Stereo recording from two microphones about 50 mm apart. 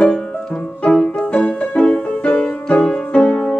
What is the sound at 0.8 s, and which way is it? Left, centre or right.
Music, centre.